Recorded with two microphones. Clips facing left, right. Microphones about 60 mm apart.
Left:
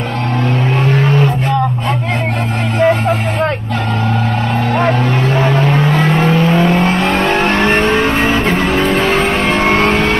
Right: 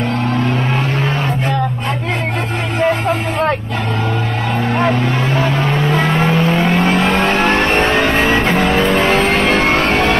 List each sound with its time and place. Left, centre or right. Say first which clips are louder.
2.8 s music: left 3 dB; centre
4.7 s music: left 2 dB; centre
6.0 s vehicle: left 2 dB; centre
8.3 s music: even; centre
8.5 s music: even; centre
9.6 s music: left 2 dB; left